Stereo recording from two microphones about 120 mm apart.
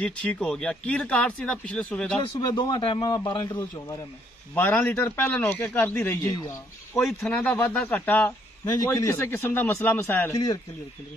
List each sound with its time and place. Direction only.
0.0 s speech: 10° left (ahead or behind)
2.4 s a man's voice: 35° left (ahead or behind)
4.6 s speech: 15° left (ahead or behind)
6.3 s a man's voice: 30° left (ahead or behind)
7.1 s speech: 5° left (ahead or behind)
7.5 s speech: 15° left (ahead or behind)
8.6 s a man's voice: 30° left (ahead or behind)
10.3 s a man's voice: 30° left (ahead or behind)